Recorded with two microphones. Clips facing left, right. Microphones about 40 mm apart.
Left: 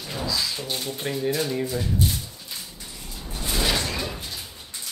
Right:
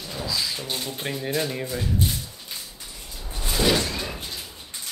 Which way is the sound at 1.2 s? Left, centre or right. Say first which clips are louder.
Left 2 dB; centre.